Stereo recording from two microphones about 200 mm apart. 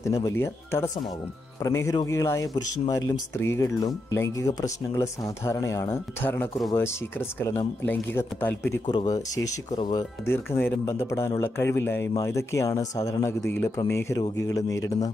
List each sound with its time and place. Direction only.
0.0 s speech: 15° left (ahead or behind)
8.8 s speech: 20° left (ahead or behind)